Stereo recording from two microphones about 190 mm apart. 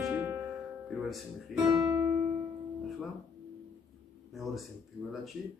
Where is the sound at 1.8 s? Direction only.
15° right (ahead or behind).